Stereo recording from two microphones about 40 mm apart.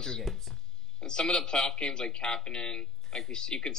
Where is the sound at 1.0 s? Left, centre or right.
Centre.